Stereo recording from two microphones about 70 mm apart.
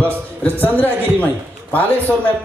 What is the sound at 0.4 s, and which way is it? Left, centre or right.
Speech, left.